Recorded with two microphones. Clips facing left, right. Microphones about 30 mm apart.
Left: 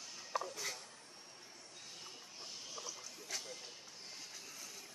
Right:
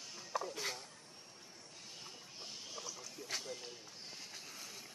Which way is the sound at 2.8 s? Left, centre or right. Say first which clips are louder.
Even; centre.